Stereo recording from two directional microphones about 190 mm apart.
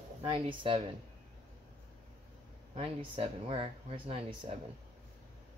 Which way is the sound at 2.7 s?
30° right (ahead or behind).